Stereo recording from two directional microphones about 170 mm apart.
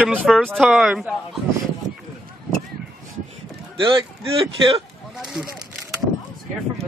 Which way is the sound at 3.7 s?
30° right (ahead or behind).